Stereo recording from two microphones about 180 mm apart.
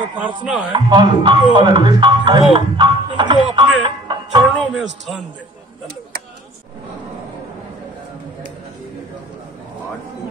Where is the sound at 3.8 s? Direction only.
25° right (ahead or behind).